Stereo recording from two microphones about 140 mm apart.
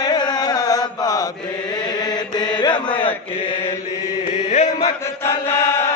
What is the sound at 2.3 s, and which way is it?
Mantra, 30° left (ahead or behind).